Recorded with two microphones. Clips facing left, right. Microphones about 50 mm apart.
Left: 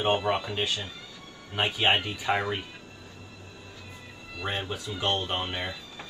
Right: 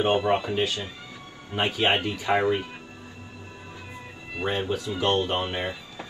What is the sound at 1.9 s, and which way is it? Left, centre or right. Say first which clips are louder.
Speech: right 1 dB; right.